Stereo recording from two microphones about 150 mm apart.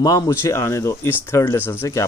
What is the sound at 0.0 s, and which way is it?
Speech, 25° left (ahead or behind).